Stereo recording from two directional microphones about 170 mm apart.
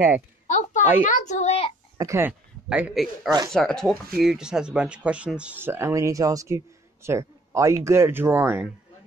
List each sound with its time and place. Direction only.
0.5 s a sound: 45° left (ahead or behind)
1.0 s a child's voice: 45° left (ahead or behind)
2.0 s speech: 15° right (ahead or behind)
3.3 s speech: 25° right (ahead or behind)
3.5 s speech: 5° left (ahead or behind); by 8.6 s 15° right (ahead or behind)